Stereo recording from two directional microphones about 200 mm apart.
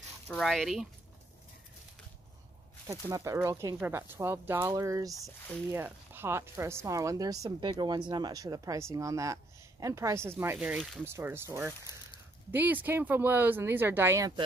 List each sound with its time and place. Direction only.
0.3 s speech: centre (ahead or behind)
3.1 s speech: 15° right (ahead or behind)